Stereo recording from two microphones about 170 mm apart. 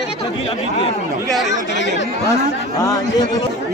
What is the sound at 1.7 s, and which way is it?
Speech, 90° left.